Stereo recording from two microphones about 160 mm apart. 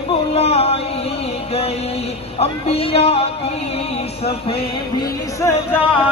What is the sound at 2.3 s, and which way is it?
Speech, 40° left (ahead or behind).